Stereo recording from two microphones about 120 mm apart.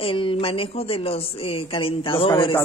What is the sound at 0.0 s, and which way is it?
A woman's voice, 50° left (ahead or behind).